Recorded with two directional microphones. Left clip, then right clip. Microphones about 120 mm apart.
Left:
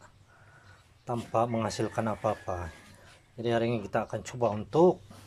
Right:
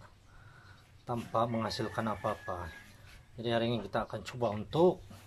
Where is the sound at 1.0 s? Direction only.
20° left (ahead or behind).